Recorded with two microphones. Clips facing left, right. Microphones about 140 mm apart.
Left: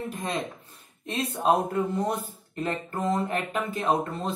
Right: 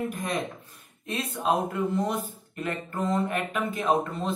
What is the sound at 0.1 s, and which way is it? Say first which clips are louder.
Speech: right 1 dB; 25° left (ahead or behind).